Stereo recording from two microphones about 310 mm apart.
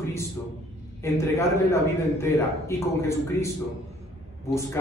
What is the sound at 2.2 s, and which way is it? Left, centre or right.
A man's voice, centre.